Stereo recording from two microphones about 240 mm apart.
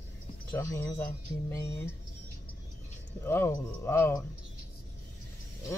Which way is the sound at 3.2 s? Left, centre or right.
Centre.